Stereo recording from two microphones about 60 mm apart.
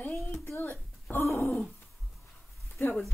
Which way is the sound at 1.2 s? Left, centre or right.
Left.